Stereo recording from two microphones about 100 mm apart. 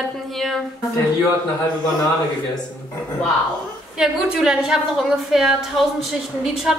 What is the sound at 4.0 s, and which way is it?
A woman's voice, 5° right (ahead or behind).